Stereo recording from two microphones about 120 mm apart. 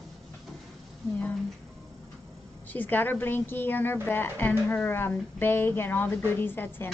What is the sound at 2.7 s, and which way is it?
A woman's voice, 15° left (ahead or behind).